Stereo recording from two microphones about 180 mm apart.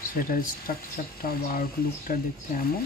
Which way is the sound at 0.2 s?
50° left (ahead or behind).